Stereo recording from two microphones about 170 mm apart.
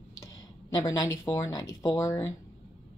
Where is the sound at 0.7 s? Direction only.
20° left (ahead or behind).